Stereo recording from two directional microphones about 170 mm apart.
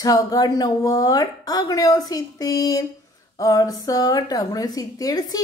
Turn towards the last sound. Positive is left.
turn(degrees=20)  # may be behind; listen again after turning